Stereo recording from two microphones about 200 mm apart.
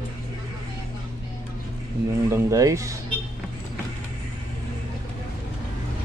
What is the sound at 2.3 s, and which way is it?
Speech, 15° right (ahead or behind).